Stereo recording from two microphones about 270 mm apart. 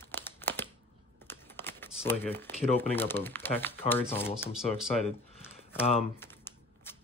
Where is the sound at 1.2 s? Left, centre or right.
Centre.